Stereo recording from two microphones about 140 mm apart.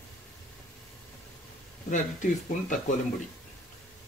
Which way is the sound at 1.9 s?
65° left (ahead or behind).